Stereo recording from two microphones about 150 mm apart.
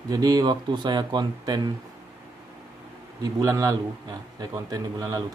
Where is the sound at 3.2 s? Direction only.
20° right (ahead or behind).